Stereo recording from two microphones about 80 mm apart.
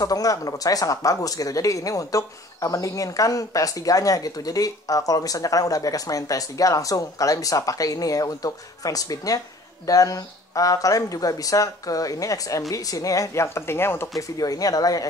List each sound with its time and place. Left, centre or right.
0.0 s speech: left
14.1 s speech: left